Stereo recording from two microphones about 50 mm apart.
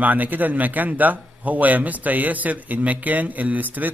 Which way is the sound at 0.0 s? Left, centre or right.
Right.